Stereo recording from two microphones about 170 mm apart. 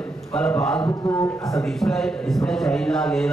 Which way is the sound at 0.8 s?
20° left (ahead or behind).